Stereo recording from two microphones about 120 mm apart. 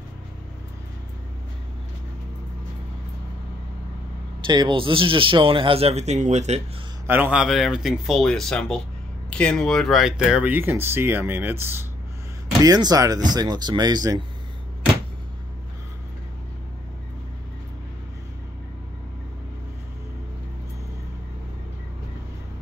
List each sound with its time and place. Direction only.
4.5 s speech: 40° right (ahead or behind); by 6.6 s 70° right (ahead or behind)
7.1 s speech: 15° right (ahead or behind)
7.4 s speech: centre (ahead or behind); by 11.8 s 20° right (ahead or behind)
12.6 s speech: 30° right (ahead or behind)